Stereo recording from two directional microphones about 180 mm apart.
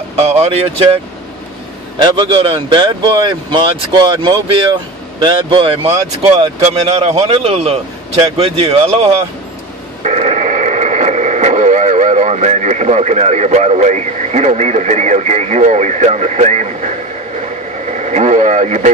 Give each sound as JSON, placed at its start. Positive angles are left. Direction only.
{"t": 0.1, "sound": "speech", "side_deg": -35}
{"t": 2.0, "sound": "speech", "side_deg": -25}
{"t": 10.0, "sound": "speech", "side_deg": -40}
{"t": 17.4, "sound": "radio", "side_deg": -40}